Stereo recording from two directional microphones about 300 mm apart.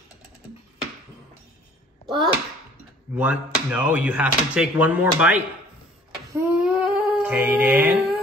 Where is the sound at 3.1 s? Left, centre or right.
Centre.